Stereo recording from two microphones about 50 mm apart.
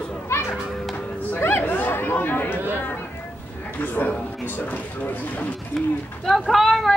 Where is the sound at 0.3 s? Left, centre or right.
Left.